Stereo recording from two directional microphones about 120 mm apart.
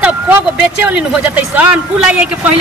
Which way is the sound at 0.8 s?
10° right (ahead or behind).